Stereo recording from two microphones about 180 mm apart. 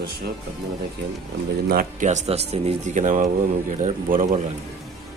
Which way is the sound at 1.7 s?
50° right (ahead or behind).